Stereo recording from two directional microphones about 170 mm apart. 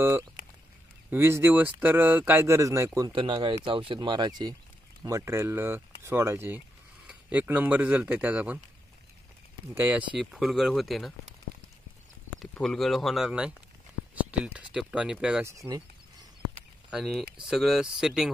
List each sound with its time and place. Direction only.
1.1 s speech: 15° right (ahead or behind)
3.1 s speech: 30° right (ahead or behind); by 8.5 s 10° right (ahead or behind)
9.8 s speech: 10° right (ahead or behind)
12.4 s speech: centre (ahead or behind)
15.4 s a sound: 20° right (ahead or behind)
16.9 s speech: centre (ahead or behind)